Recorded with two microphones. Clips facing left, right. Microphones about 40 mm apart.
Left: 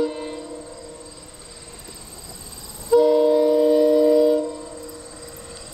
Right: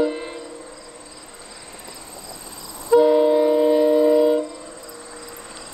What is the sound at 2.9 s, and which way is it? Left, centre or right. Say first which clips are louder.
Train: right 1 dB; centre.